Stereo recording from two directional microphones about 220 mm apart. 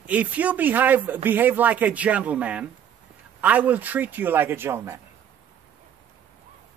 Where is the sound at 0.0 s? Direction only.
5° right (ahead or behind).